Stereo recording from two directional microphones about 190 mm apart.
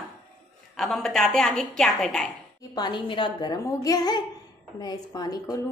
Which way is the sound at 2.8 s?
25° left (ahead or behind).